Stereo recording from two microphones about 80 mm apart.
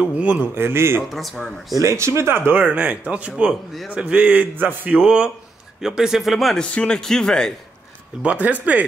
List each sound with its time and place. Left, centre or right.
0.0 s a man's voice: centre
0.6 s speech: right
1.0 s speech: centre
1.8 s speech: right
2.5 s a man's voice: centre
6.6 s a man's voice: centre
8.2 s a man's voice: centre